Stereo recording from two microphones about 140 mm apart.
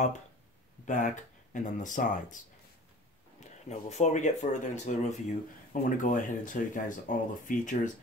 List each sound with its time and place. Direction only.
0.8 s speech: 65° left (ahead or behind)
3.3 s speech: 55° left (ahead or behind)
5.7 s speech: 70° left (ahead or behind)